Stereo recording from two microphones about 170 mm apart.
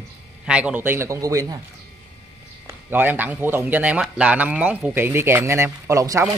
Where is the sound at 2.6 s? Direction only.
10° right (ahead or behind).